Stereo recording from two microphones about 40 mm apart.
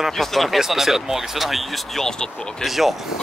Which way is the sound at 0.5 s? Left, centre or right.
Centre.